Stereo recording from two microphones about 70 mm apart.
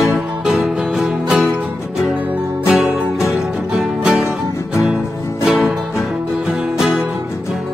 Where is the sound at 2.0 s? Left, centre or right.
Right.